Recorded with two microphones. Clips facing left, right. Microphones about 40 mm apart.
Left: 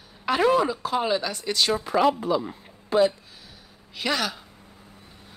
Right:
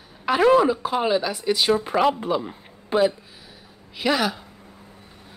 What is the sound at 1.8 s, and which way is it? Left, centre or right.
Speech, right.